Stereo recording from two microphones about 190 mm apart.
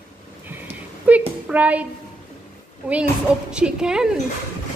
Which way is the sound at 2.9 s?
5° right (ahead or behind).